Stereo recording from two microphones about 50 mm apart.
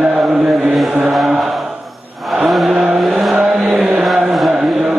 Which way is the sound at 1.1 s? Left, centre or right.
Centre.